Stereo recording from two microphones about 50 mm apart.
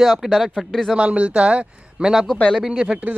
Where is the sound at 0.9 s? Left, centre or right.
Right; by 2.8 s centre.